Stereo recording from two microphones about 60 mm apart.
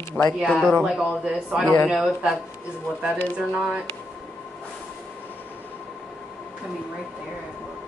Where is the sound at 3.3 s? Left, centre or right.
Centre.